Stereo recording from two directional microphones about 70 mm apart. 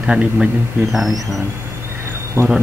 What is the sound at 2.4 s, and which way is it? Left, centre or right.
Speech, right.